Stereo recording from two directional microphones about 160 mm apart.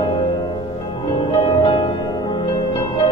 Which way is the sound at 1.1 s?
30° left (ahead or behind).